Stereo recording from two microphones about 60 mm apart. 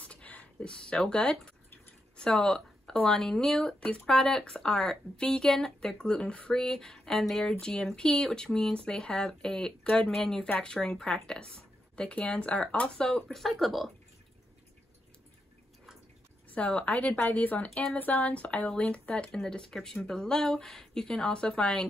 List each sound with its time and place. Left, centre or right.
0.0 s a woman's voice: left; by 13.9 s centre
16.4 s a woman's voice: left